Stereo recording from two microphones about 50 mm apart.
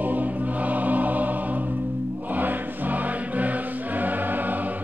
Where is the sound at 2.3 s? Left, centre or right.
Right.